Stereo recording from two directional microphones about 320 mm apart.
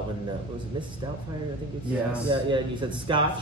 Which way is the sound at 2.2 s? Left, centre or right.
Centre.